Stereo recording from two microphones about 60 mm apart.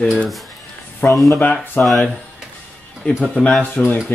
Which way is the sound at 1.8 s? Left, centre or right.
Centre.